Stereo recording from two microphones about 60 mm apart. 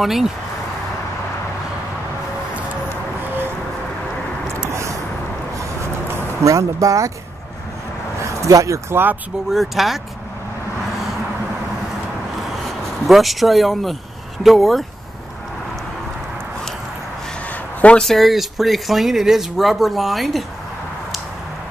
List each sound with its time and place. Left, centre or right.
0.0 s speech: centre
4.6 s a sound: right
6.4 s speech: right
8.2 s a sound: right
9.5 s speech: centre
13.0 s speech: centre
18.0 s speech: centre